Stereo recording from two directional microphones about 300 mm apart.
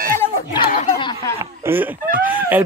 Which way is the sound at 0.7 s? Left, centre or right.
Centre.